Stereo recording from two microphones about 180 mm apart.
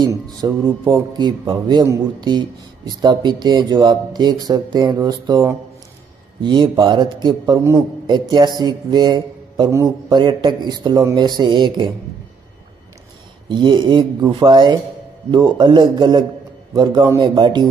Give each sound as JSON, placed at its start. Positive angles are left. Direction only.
{"t": 0.0, "sound": "a man's voice", "side_deg": -20}
{"t": 13.5, "sound": "a man's voice", "side_deg": -25}